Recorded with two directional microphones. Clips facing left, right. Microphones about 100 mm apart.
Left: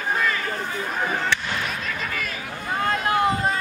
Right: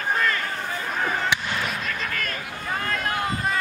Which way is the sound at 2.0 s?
5° left (ahead or behind).